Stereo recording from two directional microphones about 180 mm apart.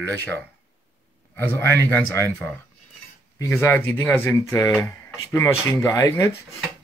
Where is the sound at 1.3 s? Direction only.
10° left (ahead or behind).